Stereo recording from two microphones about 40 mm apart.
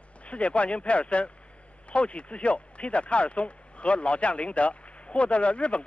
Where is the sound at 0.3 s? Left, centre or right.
Left.